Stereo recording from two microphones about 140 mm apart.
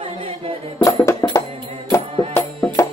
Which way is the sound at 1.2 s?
20° left (ahead or behind).